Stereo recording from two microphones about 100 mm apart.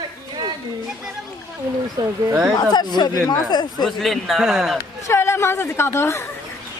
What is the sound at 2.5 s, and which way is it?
Speech, 45° left (ahead or behind).